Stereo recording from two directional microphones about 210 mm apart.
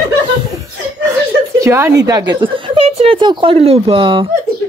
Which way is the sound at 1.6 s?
15° right (ahead or behind).